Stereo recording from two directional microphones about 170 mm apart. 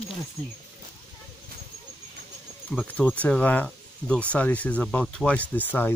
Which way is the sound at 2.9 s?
10° left (ahead or behind).